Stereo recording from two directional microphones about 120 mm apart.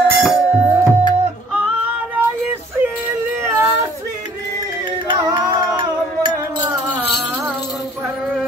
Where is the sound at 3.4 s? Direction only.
25° right (ahead or behind).